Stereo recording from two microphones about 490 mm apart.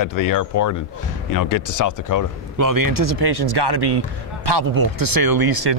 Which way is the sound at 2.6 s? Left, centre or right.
Right.